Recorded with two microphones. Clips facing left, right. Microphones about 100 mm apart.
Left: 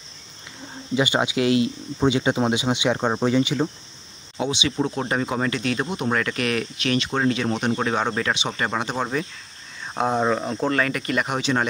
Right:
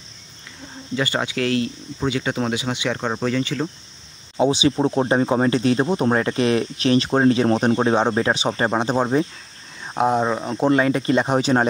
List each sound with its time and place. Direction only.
0.9 s speech: 15° left (ahead or behind)
4.4 s speech: 35° right (ahead or behind)
9.9 s speech: 5° right (ahead or behind)
10.6 s speech: 20° right (ahead or behind); by 11.6 s 35° right (ahead or behind)